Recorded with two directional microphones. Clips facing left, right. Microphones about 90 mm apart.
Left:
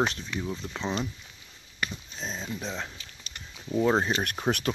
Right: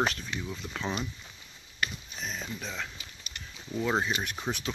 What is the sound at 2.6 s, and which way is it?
Speech, 30° left (ahead or behind).